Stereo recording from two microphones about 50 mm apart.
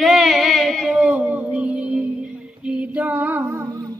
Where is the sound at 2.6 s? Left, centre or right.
Right.